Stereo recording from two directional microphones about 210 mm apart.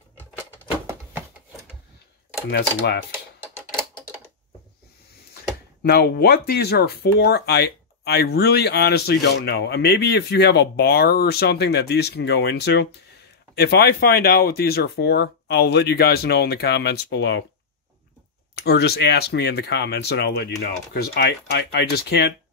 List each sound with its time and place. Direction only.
2.5 s speech: 50° left (ahead or behind)
5.3 s speech: 50° left (ahead or behind)
18.5 s speech: 50° left (ahead or behind)